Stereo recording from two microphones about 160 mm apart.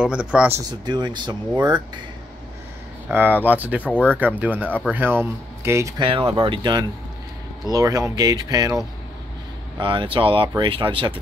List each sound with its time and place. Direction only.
0.0 s speech: 5° right (ahead or behind)
0.7 s speech: 25° right (ahead or behind)
3.1 s speech: 15° right (ahead or behind)
3.8 s speech: 10° left (ahead or behind)
4.4 s speech: 10° right (ahead or behind)
5.9 s speech: 35° right (ahead or behind)